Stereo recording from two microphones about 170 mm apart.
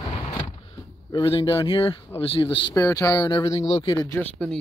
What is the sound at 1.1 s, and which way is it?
Speech, 30° left (ahead or behind).